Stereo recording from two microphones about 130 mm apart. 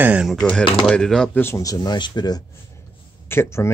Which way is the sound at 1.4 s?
20° left (ahead or behind).